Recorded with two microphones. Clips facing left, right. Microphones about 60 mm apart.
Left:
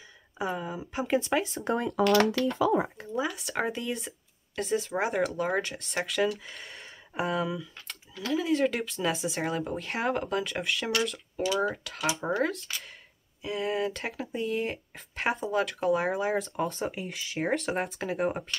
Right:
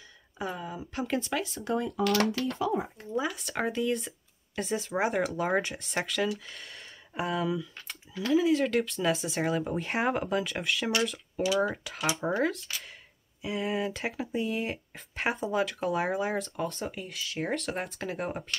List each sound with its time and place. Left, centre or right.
0.4 s speech: centre
1.5 s speech: left
2.2 s speech: left
3.1 s speech: centre
16.8 s speech: centre